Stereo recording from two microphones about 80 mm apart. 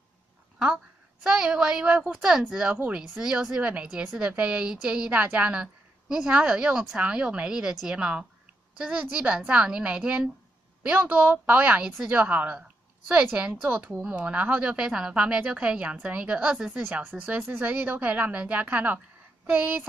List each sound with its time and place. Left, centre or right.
1.2 s a woman's voice: centre
14.1 s a woman's voice: centre
16.8 s speech: right